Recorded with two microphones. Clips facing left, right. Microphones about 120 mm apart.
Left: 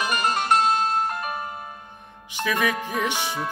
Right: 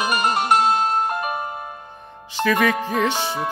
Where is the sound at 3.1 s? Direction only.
15° right (ahead or behind).